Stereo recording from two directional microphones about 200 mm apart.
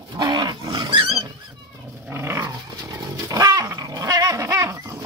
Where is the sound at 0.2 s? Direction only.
20° right (ahead or behind).